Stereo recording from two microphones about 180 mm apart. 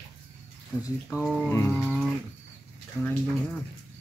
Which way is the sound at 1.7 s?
Centre (ahead or behind).